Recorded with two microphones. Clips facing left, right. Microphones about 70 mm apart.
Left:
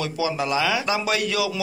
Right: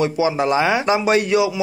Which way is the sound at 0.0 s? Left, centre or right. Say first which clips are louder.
Right 7 dB; right.